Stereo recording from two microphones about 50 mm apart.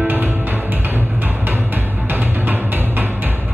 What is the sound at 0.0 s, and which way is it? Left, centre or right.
Music, right.